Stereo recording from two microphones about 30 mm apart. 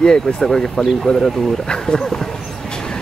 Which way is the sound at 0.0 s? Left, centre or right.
Left.